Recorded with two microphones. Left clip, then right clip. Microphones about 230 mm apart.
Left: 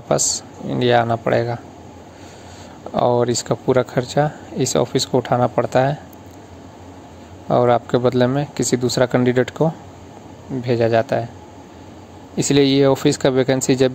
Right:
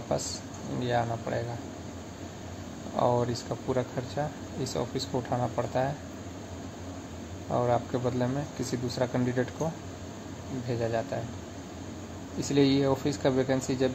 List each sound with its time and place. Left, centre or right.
0.1 s speech: left
3.0 s speech: left
7.4 s speech: left
10.7 s speech: left
12.4 s speech: left